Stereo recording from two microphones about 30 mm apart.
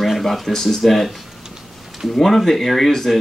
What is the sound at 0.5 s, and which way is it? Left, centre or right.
Speech, centre.